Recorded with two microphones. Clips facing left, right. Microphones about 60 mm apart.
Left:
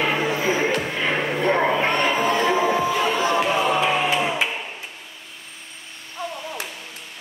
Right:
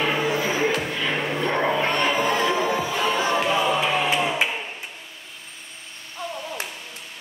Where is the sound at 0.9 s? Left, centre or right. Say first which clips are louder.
Left 2 dB; left.